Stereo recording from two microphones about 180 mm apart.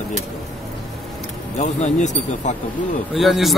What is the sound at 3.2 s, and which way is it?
Speech, centre (ahead or behind).